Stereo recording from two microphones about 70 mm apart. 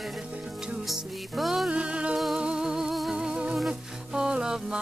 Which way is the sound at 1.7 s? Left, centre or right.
Centre.